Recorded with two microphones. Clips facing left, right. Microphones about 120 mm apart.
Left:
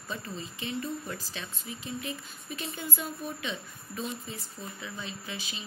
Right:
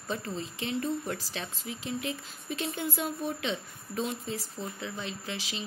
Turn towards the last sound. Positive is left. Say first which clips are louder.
# right 3 dB
turn(degrees=-90)